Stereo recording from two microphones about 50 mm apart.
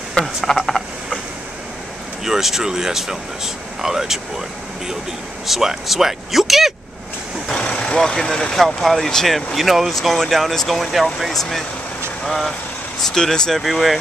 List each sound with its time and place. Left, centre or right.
0.6 s frog: centre
2.2 s speech: centre
5.5 s speech: centre
7.5 s vehicle: left
7.9 s speech: centre
13.6 s speech: centre